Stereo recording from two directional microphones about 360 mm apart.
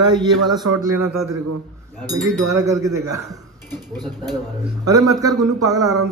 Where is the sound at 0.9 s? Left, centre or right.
Right.